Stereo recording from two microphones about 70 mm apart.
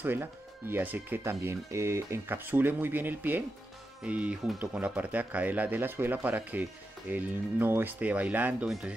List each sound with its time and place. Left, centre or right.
0.0 s speech: right
2.2 s speech: right